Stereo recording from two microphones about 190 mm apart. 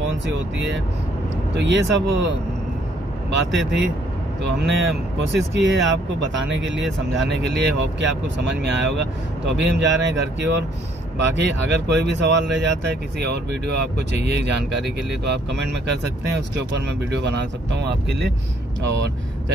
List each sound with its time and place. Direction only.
0.3 s speech: 70° right (ahead or behind)